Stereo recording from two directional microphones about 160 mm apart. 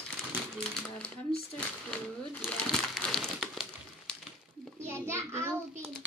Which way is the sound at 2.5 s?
5° left (ahead or behind).